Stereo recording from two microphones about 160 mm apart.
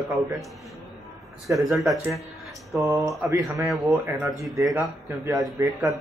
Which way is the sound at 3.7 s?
Centre (ahead or behind).